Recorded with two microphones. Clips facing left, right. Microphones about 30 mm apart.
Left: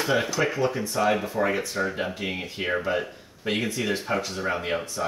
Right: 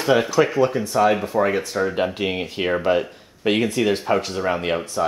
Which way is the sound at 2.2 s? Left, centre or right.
Right.